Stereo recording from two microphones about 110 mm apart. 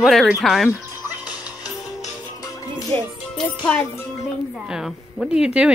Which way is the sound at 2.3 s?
30° left (ahead or behind).